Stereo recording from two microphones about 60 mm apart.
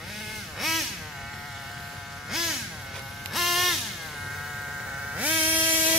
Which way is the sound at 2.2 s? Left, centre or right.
Centre.